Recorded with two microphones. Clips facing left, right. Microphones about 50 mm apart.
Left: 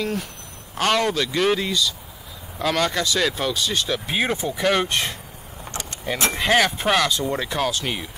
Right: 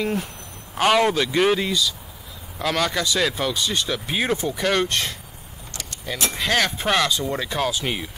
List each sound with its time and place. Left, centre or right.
0.0 s speech: centre
5.7 s vehicle: left
6.3 s speech: centre
6.6 s speech: centre